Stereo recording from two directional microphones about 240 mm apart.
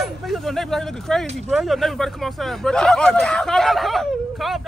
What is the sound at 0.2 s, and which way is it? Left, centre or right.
Speech, centre.